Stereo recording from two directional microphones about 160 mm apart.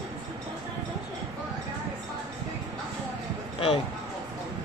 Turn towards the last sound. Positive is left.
turn(degrees=35)  # may be behind; listen again after turning